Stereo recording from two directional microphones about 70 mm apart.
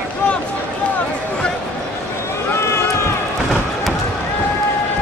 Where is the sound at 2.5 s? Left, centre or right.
Left.